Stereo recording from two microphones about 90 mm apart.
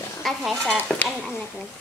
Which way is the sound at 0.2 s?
5° left (ahead or behind).